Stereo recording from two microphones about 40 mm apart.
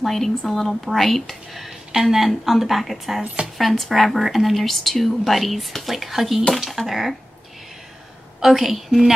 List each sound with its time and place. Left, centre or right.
0.1 s speech: centre
8.4 s speech: centre